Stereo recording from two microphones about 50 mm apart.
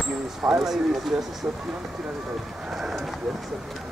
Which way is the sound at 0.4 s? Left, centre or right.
Centre.